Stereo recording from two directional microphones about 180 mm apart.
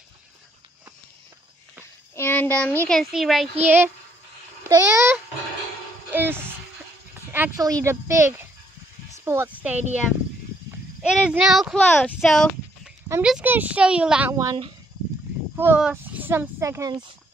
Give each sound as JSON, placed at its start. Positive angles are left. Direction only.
{"t": 2.1, "sound": "a child's voice", "side_deg": 10}
{"t": 6.1, "sound": "music", "side_deg": -10}
{"t": 7.3, "sound": "speech", "side_deg": -15}
{"t": 11.0, "sound": "speech", "side_deg": -5}
{"t": 14.3, "sound": "speech", "side_deg": -20}